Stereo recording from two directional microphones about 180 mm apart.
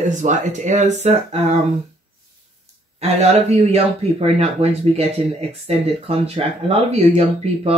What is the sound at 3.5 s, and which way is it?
Speech, 35° right (ahead or behind).